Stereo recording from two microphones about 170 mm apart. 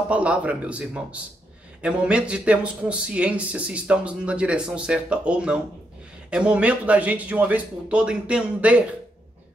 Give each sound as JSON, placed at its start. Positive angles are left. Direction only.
{"t": 0.1, "sound": "a man's voice", "side_deg": -10}